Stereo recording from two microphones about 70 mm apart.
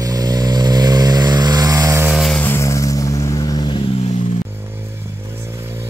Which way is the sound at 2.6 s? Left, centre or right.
Left.